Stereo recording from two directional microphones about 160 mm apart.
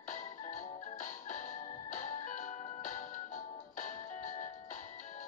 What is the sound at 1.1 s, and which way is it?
Music, 50° left (ahead or behind).